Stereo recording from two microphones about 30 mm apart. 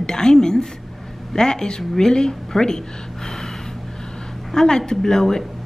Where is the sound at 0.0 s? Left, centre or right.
Left.